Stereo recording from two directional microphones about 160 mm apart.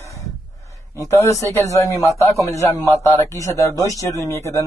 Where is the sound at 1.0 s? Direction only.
20° left (ahead or behind).